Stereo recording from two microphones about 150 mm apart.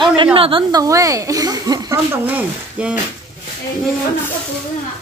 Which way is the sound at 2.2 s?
10° right (ahead or behind).